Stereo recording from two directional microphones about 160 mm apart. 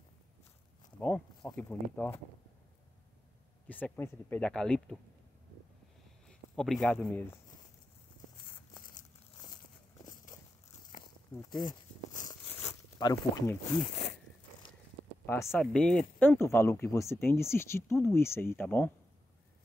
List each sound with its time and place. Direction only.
0.9 s speech: 10° left (ahead or behind)
3.6 s speech: 10° left (ahead or behind)
6.2 s speech: 5° left (ahead or behind)
11.3 s a sound: 25° left (ahead or behind)
13.0 s speech: 20° left (ahead or behind)
15.4 s speech: centre (ahead or behind)